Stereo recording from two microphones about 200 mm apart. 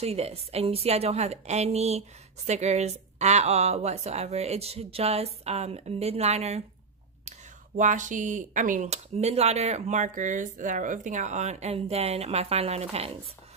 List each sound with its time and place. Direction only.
0.0 s a woman's voice: 30° right (ahead or behind)